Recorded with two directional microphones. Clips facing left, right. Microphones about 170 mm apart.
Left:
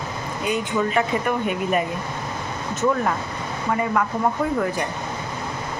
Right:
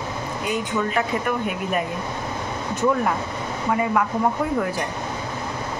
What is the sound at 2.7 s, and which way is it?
Speech, 15° right (ahead or behind).